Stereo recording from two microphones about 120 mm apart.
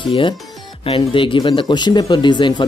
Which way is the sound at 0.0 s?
45° left (ahead or behind).